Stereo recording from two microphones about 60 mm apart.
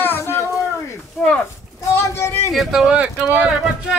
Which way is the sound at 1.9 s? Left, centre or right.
Left.